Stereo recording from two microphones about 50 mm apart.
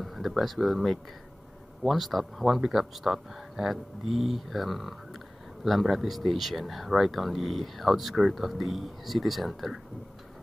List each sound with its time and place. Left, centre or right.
0.0 s speech: centre